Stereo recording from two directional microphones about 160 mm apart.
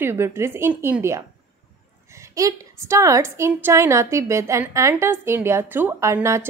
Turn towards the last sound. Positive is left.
turn(degrees=-15)  # may be behind; listen again after turning